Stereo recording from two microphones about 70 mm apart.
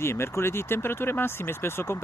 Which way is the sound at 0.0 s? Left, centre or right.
Left.